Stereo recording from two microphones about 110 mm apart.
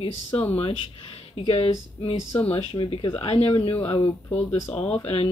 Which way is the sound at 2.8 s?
50° left (ahead or behind).